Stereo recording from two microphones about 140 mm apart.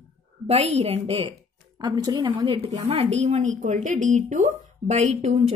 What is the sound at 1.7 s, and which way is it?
A woman's voice, 30° right (ahead or behind).